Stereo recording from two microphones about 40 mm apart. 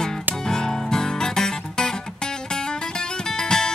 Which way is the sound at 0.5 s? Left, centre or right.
Centre.